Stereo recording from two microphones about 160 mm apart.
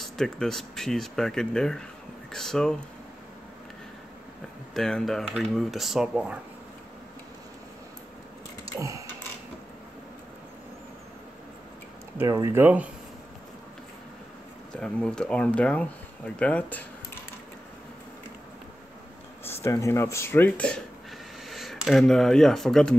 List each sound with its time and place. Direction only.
0.0 s speech: 5° left (ahead or behind)
4.7 s speech: 5° left (ahead or behind)
8.7 s sewing machine: 20° right (ahead or behind)
12.2 s speech: 20° right (ahead or behind)
14.7 s speech: 5° left (ahead or behind)
19.4 s speech: 15° left (ahead or behind)